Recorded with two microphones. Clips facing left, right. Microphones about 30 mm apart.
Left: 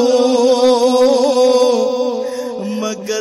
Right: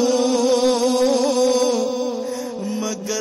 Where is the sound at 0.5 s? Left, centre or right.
Left.